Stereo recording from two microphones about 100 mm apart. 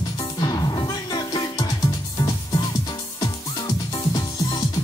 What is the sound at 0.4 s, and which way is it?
Music, 45° left (ahead or behind).